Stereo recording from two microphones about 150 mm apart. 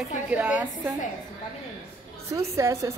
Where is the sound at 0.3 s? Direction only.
10° right (ahead or behind).